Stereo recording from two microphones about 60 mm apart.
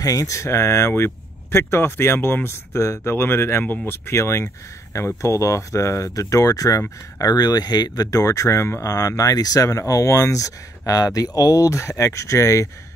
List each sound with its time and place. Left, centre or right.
0.0 s speech: left
0.5 s speech: left
3.6 s speech: left
3.9 s speech: left
7.2 s speech: left
8.8 s speech: left